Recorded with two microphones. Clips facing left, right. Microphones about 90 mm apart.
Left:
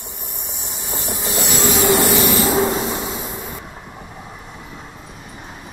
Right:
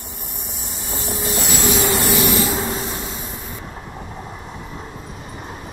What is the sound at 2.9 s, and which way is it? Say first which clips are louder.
Train: left 4 dB; 20° left (ahead or behind).